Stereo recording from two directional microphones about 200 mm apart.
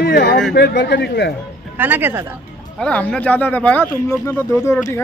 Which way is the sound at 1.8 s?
10° right (ahead or behind).